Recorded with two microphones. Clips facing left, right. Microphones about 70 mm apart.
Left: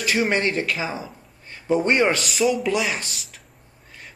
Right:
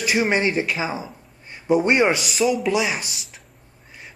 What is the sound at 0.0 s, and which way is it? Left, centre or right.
A man's voice, centre.